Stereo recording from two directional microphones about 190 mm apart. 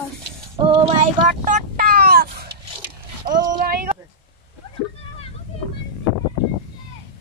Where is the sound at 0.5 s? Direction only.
30° right (ahead or behind).